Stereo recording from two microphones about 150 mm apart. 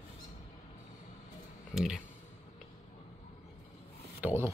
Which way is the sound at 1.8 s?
5° right (ahead or behind).